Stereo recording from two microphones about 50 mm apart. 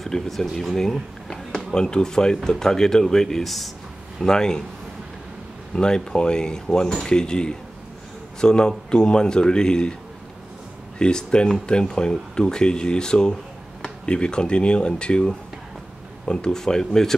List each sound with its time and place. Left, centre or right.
0.0 s speech: centre
1.7 s speech: centre
5.8 s speech: centre
11.0 s speech: centre